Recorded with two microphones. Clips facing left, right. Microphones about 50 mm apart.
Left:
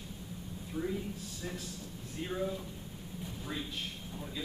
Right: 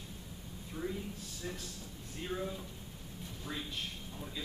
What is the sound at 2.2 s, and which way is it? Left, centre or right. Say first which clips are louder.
Speech: left 3 dB; centre.